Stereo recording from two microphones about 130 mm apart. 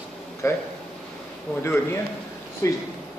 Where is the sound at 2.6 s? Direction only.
25° left (ahead or behind).